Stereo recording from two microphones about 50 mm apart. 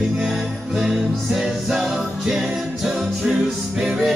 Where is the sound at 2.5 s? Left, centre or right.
Centre.